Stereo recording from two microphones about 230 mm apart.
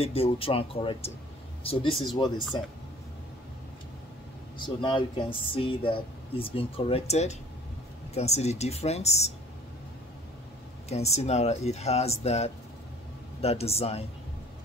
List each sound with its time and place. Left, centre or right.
0.0 s speech: left
4.6 s speech: centre
10.9 s speech: left